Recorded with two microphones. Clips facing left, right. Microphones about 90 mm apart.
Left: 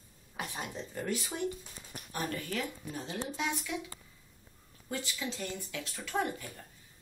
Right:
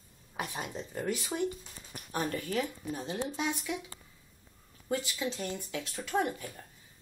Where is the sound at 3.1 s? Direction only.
20° right (ahead or behind).